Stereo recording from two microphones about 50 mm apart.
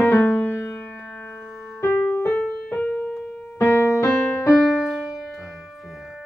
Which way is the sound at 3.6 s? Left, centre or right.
Left.